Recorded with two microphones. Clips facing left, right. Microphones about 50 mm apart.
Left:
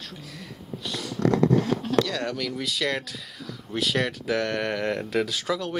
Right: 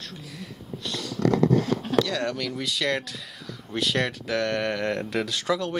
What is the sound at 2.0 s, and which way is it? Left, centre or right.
Speech, centre.